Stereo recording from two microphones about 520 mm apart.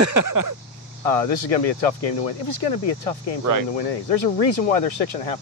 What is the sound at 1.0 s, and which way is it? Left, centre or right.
Speech, left.